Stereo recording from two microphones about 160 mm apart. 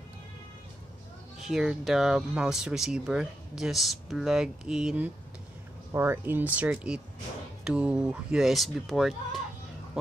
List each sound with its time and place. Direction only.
1.5 s speech: centre (ahead or behind)